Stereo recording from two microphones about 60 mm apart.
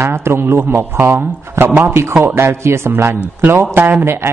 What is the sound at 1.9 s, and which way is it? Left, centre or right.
Speech, right.